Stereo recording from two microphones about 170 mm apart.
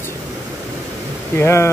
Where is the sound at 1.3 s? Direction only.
15° left (ahead or behind).